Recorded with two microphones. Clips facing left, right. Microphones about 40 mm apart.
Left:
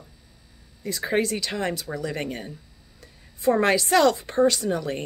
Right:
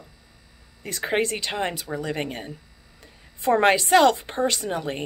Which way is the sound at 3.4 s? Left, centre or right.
Right.